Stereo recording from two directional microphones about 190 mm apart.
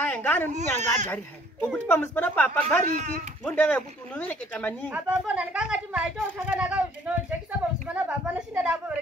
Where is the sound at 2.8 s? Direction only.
40° right (ahead or behind).